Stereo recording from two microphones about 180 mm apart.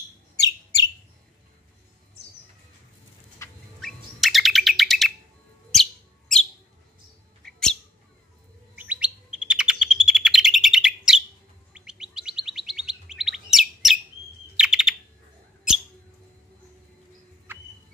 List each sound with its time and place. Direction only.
0.4 s bird: 20° left (ahead or behind)
3.8 s chirp: centre (ahead or behind)
5.7 s bird: centre (ahead or behind)
7.4 s bird: 5° left (ahead or behind)
8.7 s chirp: 5° right (ahead or behind)
14.6 s bird: 5° right (ahead or behind)
17.5 s music: 10° right (ahead or behind)